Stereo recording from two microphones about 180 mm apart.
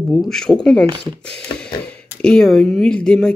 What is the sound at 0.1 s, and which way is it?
Speech, 5° left (ahead or behind).